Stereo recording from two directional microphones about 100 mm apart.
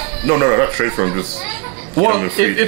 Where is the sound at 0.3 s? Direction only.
20° right (ahead or behind).